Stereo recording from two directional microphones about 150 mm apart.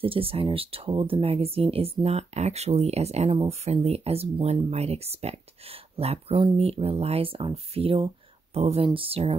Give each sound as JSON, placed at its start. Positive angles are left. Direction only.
{"t": 0.0, "sound": "speech", "side_deg": -40}